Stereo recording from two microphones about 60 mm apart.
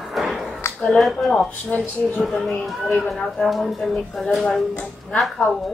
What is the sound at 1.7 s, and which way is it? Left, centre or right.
Speech, left.